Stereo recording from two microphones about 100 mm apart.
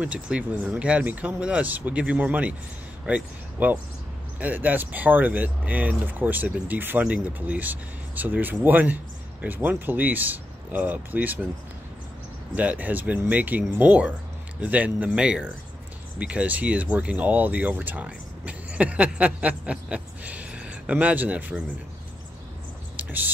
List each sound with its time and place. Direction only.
0.0 s speech: 10° right (ahead or behind)
12.5 s speech: 15° right (ahead or behind)
22.9 s speech: 20° right (ahead or behind)